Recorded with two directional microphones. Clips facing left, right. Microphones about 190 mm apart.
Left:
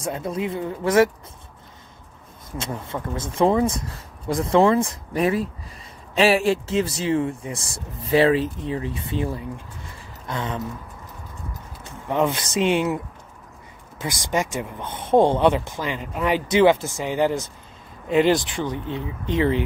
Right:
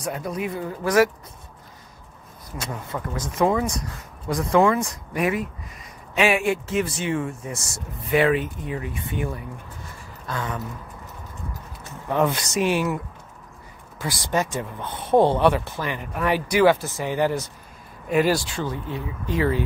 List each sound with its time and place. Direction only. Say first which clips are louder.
0.0 s speech: left 2 dB; 25° left (ahead or behind)
2.5 s speech: left 2 dB; 25° left (ahead or behind)
12.1 s speech: even; 20° left (ahead or behind)